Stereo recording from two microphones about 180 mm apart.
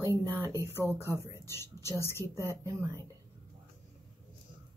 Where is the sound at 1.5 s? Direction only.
15° left (ahead or behind).